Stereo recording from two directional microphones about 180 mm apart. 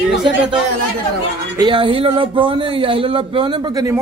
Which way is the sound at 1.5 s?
25° right (ahead or behind).